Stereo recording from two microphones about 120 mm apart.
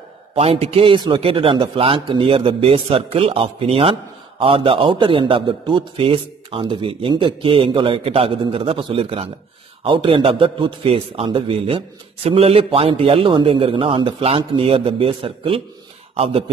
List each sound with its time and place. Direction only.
0.3 s a man's voice: 55° right (ahead or behind)